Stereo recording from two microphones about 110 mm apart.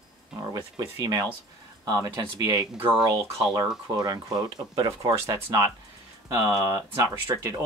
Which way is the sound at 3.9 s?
40° right (ahead or behind).